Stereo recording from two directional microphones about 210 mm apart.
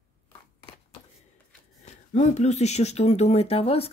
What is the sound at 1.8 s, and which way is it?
Speech, 35° left (ahead or behind).